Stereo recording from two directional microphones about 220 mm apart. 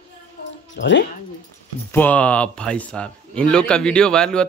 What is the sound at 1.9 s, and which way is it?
Speech, 10° left (ahead or behind).